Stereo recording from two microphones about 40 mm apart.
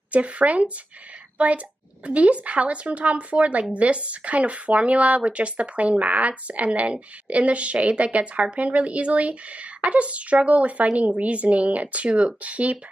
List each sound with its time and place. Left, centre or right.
0.1 s speech: right
2.0 s speech: right